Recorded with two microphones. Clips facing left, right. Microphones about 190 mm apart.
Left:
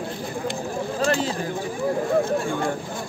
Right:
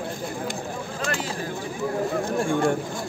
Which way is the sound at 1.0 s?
30° left (ahead or behind).